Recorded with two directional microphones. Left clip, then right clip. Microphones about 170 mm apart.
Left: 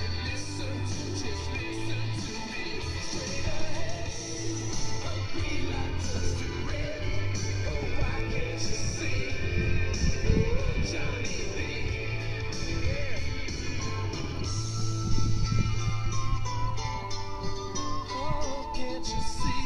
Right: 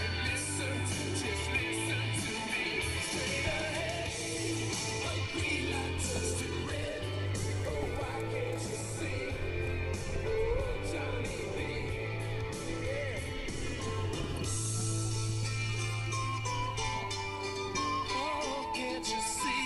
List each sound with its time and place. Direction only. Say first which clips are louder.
10.2 s music: even; 55° left (ahead or behind)
17.7 s music: right 2 dB; 30° left (ahead or behind)